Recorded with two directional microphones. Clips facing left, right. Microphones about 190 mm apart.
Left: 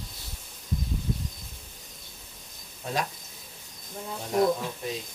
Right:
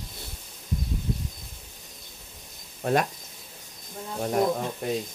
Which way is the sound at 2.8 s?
55° right (ahead or behind).